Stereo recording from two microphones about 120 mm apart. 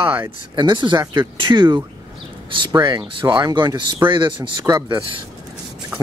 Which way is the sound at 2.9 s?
40° right (ahead or behind).